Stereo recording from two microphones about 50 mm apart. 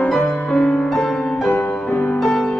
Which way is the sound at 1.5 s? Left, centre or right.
Left.